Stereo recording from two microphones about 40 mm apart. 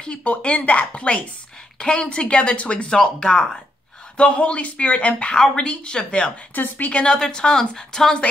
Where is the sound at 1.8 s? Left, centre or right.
Left.